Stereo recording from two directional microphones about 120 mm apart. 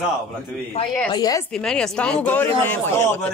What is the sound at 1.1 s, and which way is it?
Speech, 35° left (ahead or behind).